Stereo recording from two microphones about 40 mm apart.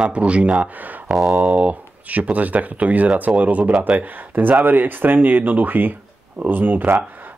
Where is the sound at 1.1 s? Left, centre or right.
Centre.